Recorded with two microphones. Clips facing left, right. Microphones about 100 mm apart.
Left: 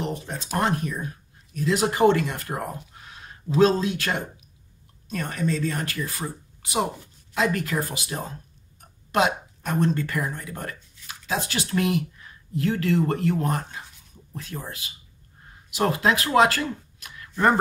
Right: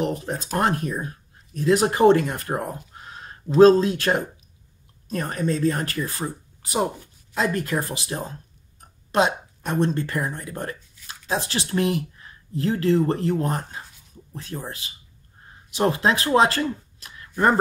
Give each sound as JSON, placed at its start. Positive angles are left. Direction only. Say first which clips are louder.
{"t": 0.7, "sound": "a woman's voice", "louder": "right 2 dB", "side_deg": -40}